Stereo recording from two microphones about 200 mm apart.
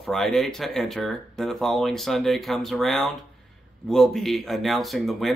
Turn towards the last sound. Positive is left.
turn(degrees=0)  # may be behind; listen again after turning